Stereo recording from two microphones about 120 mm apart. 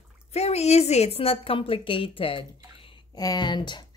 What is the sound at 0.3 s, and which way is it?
A woman's voice, 60° left (ahead or behind).